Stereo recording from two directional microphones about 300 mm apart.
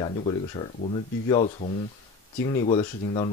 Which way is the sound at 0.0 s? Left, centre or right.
Centre.